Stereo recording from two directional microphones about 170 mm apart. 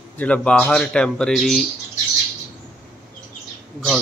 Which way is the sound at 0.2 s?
5° left (ahead or behind).